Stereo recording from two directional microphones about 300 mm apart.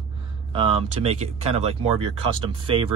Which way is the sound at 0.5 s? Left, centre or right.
Centre.